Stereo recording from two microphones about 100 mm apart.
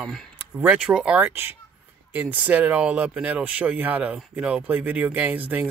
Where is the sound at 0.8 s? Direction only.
10° right (ahead or behind).